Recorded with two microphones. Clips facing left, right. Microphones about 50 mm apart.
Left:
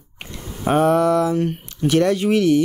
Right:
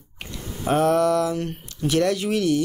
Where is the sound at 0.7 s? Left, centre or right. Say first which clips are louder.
Left 3 dB; left.